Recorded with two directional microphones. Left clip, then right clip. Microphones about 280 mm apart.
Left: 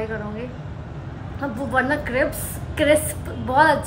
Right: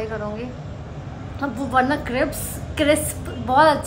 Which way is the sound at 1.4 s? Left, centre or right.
Centre.